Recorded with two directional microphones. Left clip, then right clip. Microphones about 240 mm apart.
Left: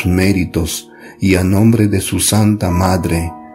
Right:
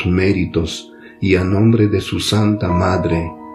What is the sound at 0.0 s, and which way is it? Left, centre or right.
Speech, left.